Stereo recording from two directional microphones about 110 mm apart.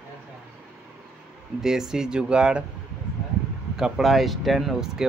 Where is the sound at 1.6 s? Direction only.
5° right (ahead or behind).